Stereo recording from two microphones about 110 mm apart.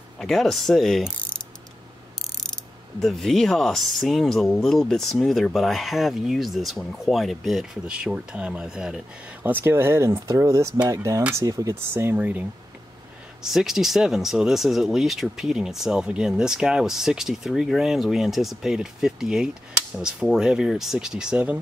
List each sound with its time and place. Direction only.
0.2 s mechanisms: 5° left (ahead or behind)
2.4 s speech: 5° left (ahead or behind)
9.4 s speech: 20° right (ahead or behind)
13.4 s speech: 5° right (ahead or behind)